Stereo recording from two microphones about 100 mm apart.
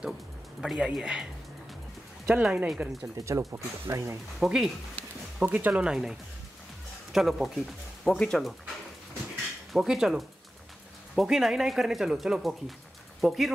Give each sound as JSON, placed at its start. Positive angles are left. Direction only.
{"t": 0.6, "sound": "speech", "side_deg": -10}
{"t": 2.2, "sound": "speech", "side_deg": -10}
{"t": 3.2, "sound": "speech", "side_deg": -30}
{"t": 4.4, "sound": "speech", "side_deg": -5}
{"t": 5.4, "sound": "speech", "side_deg": -15}
{"t": 9.7, "sound": "speech", "side_deg": -5}